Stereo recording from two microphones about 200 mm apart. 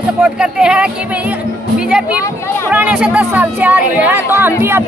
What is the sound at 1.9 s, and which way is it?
Speech, 5° right (ahead or behind).